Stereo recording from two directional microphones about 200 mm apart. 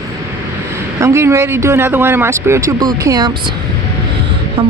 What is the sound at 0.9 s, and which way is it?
A man's voice, 15° right (ahead or behind).